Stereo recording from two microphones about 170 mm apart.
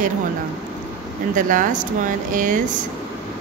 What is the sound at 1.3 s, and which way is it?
Speech, 50° right (ahead or behind).